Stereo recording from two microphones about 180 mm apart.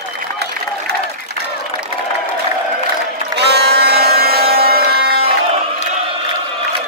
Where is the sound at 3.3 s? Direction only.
65° right (ahead or behind).